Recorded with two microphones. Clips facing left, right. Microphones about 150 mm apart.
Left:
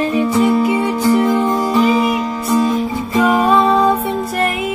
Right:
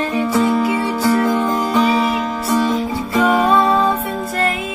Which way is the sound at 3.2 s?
10° left (ahead or behind).